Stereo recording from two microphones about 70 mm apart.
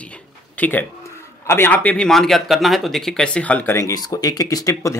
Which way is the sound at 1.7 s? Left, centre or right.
Left.